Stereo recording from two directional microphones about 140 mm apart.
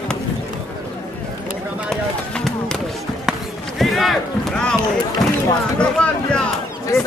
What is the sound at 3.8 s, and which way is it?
Run, centre (ahead or behind).